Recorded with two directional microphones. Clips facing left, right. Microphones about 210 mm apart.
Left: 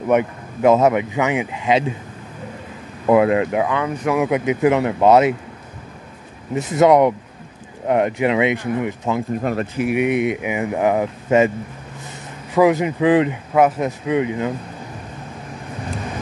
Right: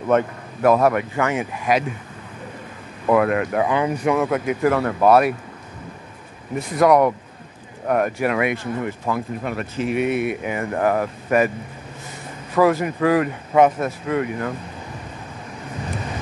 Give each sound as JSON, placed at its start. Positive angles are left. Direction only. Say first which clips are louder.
{"t": 0.1, "sound": "speech", "louder": "left 1 dB", "side_deg": 15}
{"t": 3.1, "sound": "speech", "louder": "left 3 dB", "side_deg": 20}
{"t": 6.5, "sound": "speech", "louder": "left 2 dB", "side_deg": 25}
{"t": 9.4, "sound": "speech", "louder": "left 5 dB", "side_deg": 40}
{"t": 9.8, "sound": "speech", "louder": "left 2 dB", "side_deg": 15}
{"t": 12.5, "sound": "speech", "louder": "left 2 dB", "side_deg": 15}
{"t": 13.5, "sound": "speech", "louder": "right 2 dB", "side_deg": 5}
{"t": 13.7, "sound": "speech", "louder": "left 3 dB", "side_deg": 15}